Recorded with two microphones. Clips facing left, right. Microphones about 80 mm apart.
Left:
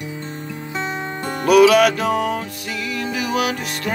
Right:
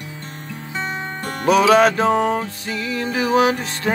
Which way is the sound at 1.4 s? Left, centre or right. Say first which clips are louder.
Left 1 dB; right.